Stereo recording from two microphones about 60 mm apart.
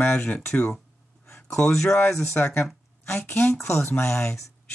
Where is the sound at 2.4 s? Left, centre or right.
Left.